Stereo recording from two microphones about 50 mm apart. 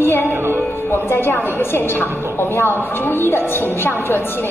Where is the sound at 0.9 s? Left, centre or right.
Left.